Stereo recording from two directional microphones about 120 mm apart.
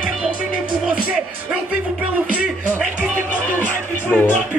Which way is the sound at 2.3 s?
10° right (ahead or behind).